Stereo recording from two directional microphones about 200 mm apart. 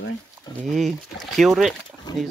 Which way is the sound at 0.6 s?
Centre (ahead or behind).